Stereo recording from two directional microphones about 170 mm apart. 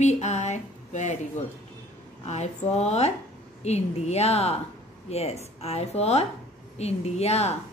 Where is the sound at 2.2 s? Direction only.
40° left (ahead or behind).